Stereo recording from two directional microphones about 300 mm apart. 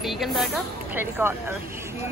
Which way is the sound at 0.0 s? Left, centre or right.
Centre.